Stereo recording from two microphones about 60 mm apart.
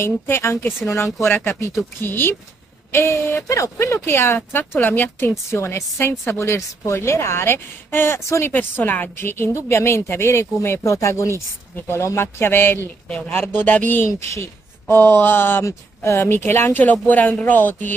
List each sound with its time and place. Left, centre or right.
0.0 s a woman's voice: left
4.0 s a woman's voice: left
5.5 s speech: left
8.2 s speech: left
8.5 s a woman's voice: left
9.6 s speech: left
10.8 s a woman's voice: left
15.6 s speech: left
17.1 s a woman's voice: left